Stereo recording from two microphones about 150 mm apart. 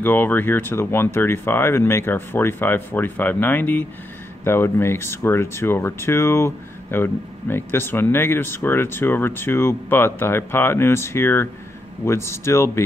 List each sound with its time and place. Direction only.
0.0 s speech: 10° left (ahead or behind)